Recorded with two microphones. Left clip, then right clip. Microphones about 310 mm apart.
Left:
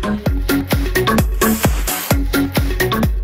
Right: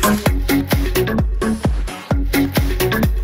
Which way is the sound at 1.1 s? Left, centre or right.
Left.